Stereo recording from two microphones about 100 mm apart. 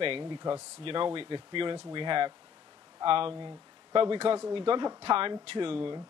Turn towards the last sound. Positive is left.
turn(degrees=-60)  # may be behind; listen again after turning